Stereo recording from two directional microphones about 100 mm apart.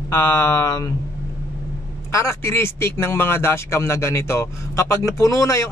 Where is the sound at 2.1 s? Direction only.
30° left (ahead or behind).